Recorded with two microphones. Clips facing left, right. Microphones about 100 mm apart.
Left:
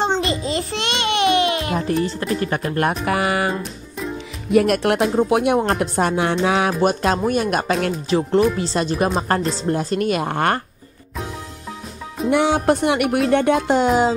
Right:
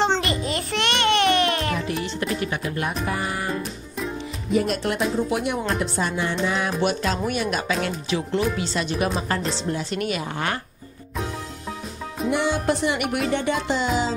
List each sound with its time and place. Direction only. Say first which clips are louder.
0.2 s music: left 4 dB; 20° left (ahead or behind)
1.8 s speech: left 5 dB; 40° left (ahead or behind)
3.1 s speech: left 7 dB; 75° left (ahead or behind)
4.5 s music: left 7 dB; 65° left (ahead or behind)
6.4 s speech: left 6 dB; 65° left (ahead or behind)
6.8 s speech: left 5 dB; 45° left (ahead or behind)
12.3 s music: left 6 dB; 60° left (ahead or behind)
13.3 s speech: left 7 dB; 55° left (ahead or behind)